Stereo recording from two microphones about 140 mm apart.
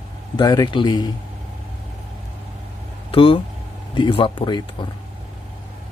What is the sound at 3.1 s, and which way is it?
Speech, 40° left (ahead or behind).